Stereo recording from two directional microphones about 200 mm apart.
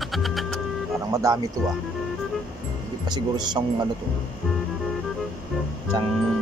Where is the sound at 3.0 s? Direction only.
20° right (ahead or behind).